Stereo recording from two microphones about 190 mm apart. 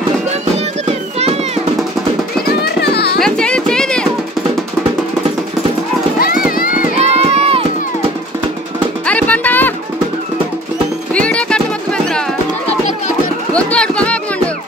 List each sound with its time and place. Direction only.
0.8 s music: 30° right (ahead or behind)
2.8 s children playing: 60° left (ahead or behind)
3.2 s music: 5° left (ahead or behind)
6.1 s clip-clop: 50° left (ahead or behind)
6.5 s music: 50° left (ahead or behind)
7.0 s run: 35° right (ahead or behind)
9.0 s music: 10° left (ahead or behind)
11.1 s music: 5° left (ahead or behind)
13.5 s music: 5° left (ahead or behind)